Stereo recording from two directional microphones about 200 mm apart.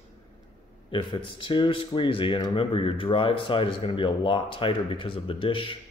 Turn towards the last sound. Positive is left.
turn(degrees=25)  # may be behind; listen again after turning